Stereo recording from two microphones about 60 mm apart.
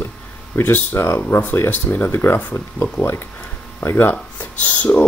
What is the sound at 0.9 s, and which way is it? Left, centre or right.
Speech, left.